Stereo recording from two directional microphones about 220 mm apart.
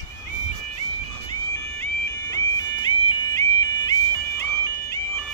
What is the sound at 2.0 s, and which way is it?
Music, 20° left (ahead or behind).